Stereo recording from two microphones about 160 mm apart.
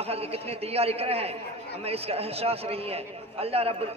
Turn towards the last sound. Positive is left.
turn(degrees=-40)  # may be behind; listen again after turning